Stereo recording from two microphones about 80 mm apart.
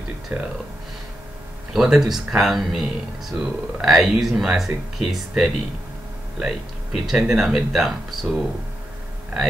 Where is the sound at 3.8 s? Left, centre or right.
Centre.